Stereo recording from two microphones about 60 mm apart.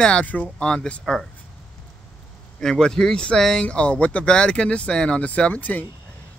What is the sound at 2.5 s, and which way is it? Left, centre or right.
Speech, centre.